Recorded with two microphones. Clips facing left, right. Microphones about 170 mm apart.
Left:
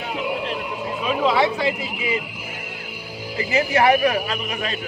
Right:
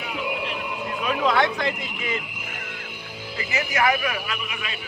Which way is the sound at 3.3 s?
30° left (ahead or behind).